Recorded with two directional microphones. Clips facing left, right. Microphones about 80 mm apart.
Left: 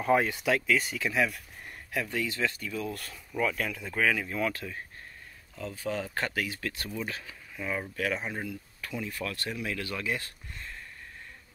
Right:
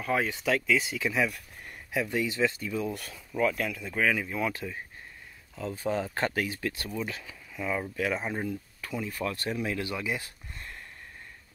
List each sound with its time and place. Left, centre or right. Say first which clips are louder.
0.1 s speech: left 2 dB; centre
1.9 s speech: right 3 dB; centre
3.1 s speech: right 2 dB; centre
5.7 s speech: right 3 dB; right
7.5 s speech: right 3 dB; centre
7.9 s speech: right 2 dB; centre
9.1 s speech: right 3 dB; right
9.9 s speech: even; centre